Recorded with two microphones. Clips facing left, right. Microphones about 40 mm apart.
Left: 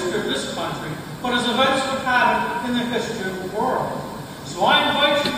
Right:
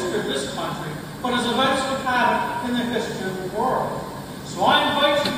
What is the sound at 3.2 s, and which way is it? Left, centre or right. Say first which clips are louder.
Speech: left 1 dB; centre.